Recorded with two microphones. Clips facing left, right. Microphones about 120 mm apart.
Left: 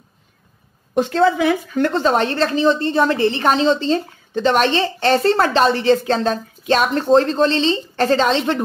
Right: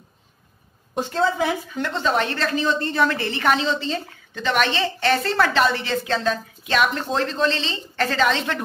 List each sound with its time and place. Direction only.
0.9 s a woman's voice: 90° left
1.7 s a woman's voice: 50° left (ahead or behind); by 8.6 s 25° left (ahead or behind)